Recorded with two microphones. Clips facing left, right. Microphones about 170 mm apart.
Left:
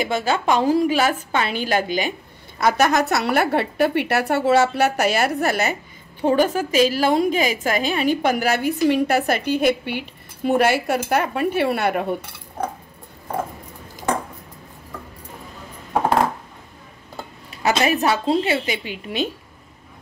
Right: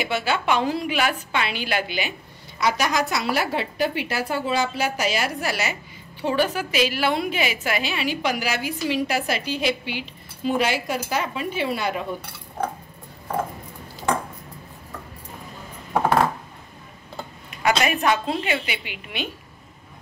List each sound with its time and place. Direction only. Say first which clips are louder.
0.0 s a woman's voice: left 3 dB; 45° left (ahead or behind); by 12.1 s 60° left (ahead or behind)
17.5 s a woman's voice: left 2 dB; 30° left (ahead or behind)